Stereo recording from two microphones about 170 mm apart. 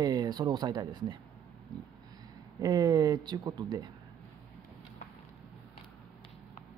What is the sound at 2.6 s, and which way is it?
Speech, 20° right (ahead or behind).